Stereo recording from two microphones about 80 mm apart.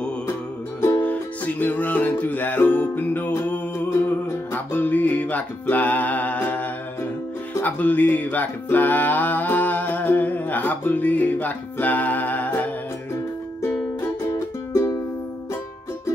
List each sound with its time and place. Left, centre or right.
0.7 s music: left
1.0 s music: centre
4.6 s music: left
14.3 s music: left